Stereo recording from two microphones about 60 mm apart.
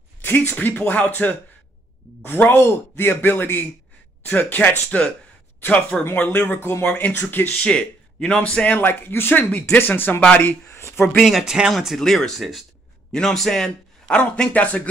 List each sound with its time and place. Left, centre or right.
0.2 s speech: left
2.5 s speech: left
6.1 s speech: left
7.5 s a man's voice: centre
8.7 s speech: left
10.7 s speech: left
11.1 s speech: centre
12.0 s a man's voice: centre; by 14.8 s left